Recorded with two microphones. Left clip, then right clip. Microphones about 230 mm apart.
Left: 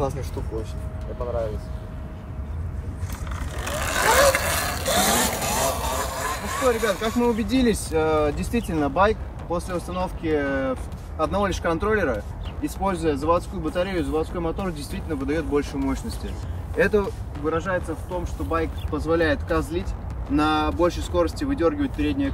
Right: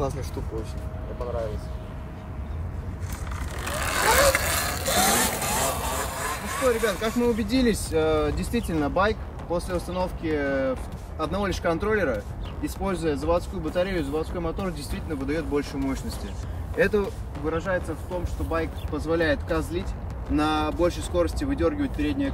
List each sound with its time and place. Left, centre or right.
3.5 s vehicle: centre
12.6 s speech: centre